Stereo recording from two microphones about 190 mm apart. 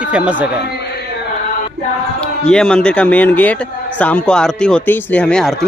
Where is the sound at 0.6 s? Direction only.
60° left (ahead or behind).